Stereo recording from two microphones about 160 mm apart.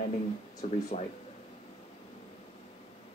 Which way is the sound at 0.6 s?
45° left (ahead or behind).